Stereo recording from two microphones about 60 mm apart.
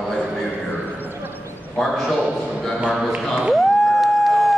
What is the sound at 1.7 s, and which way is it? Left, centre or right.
Speech, centre.